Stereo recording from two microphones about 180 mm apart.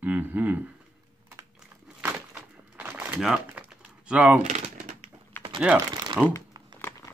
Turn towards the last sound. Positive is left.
turn(degrees=10)  # may be behind; listen again after turning